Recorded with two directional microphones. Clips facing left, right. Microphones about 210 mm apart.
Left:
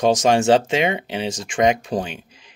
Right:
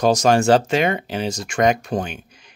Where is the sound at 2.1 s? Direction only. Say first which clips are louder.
Even; 30° left (ahead or behind).